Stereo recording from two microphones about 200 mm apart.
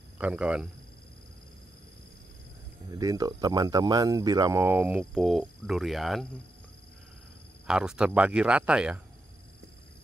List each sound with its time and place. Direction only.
0.2 s speech: 5° right (ahead or behind)
2.9 s speech: 15° right (ahead or behind); by 6.2 s centre (ahead or behind)
7.6 s speech: 5° right (ahead or behind)